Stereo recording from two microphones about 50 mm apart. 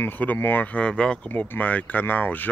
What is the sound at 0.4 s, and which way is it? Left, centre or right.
Speech, left.